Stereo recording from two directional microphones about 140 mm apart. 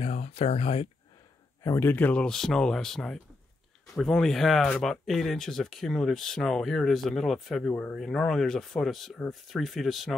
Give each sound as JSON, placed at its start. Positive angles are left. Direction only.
{"t": 0.0, "sound": "speech", "side_deg": 50}
{"t": 1.6, "sound": "speech", "side_deg": 20}